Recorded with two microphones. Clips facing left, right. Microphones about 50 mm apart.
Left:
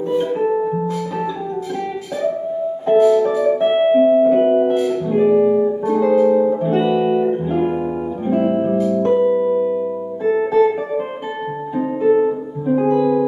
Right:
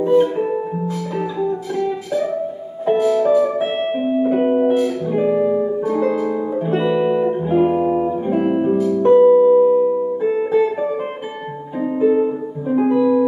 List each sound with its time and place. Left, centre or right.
0.0 s music: centre
3.1 s music: centre
7.1 s guitar: centre
8.3 s music: centre
9.3 s music: centre
10.2 s music: centre
11.8 s music: centre